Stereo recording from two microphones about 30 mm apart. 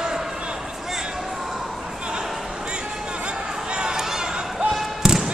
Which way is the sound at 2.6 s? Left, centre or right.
Right.